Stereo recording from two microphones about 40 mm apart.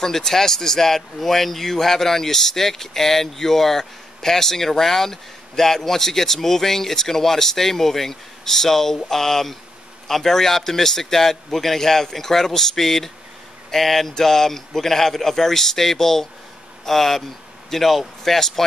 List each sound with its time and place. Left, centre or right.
0.0 s speech: centre